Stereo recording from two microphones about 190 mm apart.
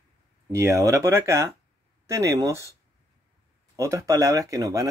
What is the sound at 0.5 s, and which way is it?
Speech, 15° right (ahead or behind).